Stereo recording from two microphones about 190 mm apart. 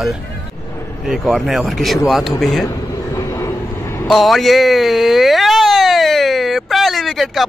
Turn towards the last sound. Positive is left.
turn(degrees=0)  # may be behind; listen again after turning